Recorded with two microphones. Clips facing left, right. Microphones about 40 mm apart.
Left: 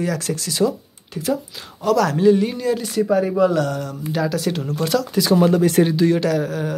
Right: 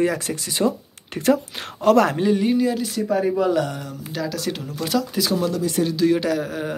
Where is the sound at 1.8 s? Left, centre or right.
Right.